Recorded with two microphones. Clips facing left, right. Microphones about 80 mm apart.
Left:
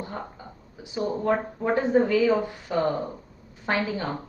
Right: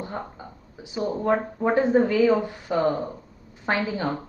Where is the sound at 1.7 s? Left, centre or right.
Right.